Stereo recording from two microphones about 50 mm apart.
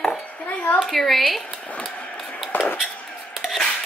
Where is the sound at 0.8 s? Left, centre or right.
Centre.